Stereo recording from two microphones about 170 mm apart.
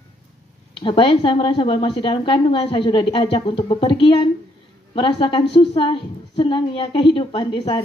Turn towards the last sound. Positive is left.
turn(degrees=25)  # may be behind; listen again after turning